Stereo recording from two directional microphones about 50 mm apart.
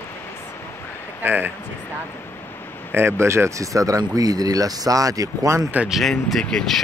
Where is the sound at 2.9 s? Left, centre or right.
Right.